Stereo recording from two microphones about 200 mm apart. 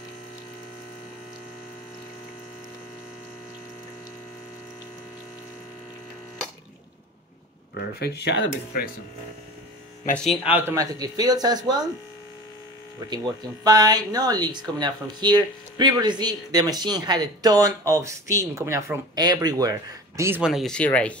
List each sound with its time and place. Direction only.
7.7 s speech: 55° left (ahead or behind)
10.1 s speech: centre (ahead or behind); by 11.8 s 20° right (ahead or behind)
13.7 s speech: 20° right (ahead or behind); by 21.1 s 5° left (ahead or behind)